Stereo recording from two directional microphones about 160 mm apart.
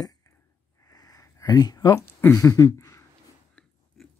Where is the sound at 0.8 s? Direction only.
20° left (ahead or behind).